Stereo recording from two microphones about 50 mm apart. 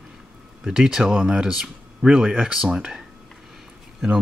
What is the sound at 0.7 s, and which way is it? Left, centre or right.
Speech, centre.